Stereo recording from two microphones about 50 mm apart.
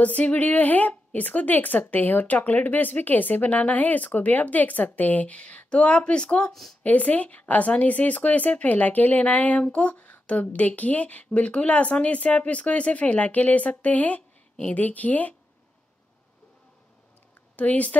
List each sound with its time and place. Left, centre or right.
0.0 s a woman's voice: left
6.5 s speech: centre
6.8 s a woman's voice: left
17.6 s a woman's voice: left